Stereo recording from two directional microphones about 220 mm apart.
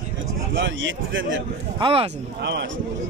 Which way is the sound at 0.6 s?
60° right (ahead or behind).